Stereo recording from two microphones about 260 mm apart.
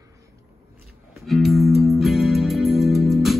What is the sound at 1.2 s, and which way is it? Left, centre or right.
Music, centre.